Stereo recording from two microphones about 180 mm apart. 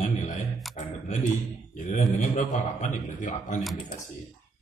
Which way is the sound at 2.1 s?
45° left (ahead or behind).